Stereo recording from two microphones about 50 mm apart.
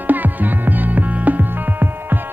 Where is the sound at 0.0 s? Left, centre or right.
Right.